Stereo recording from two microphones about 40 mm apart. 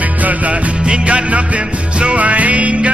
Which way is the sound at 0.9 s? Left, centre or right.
Right.